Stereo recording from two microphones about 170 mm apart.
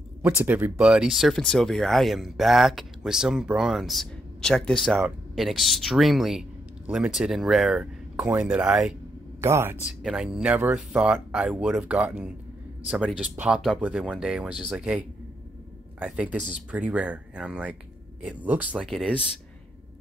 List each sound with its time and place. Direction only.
0.2 s speech: 10° right (ahead or behind)
9.4 s speech: 15° right (ahead or behind)
10.0 s speech: 5° right (ahead or behind)